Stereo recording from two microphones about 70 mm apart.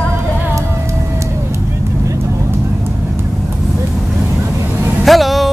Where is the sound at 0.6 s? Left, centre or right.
Right.